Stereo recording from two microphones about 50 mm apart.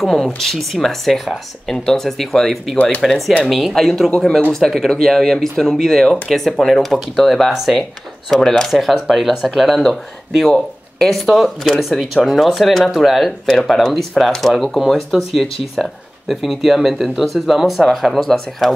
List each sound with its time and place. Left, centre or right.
0.0 s speech: centre
13.5 s speech: centre